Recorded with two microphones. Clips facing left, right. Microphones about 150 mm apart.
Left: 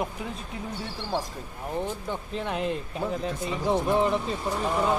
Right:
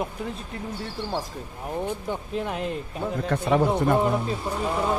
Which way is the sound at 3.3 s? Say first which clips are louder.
Right 8 dB; 65° right (ahead or behind).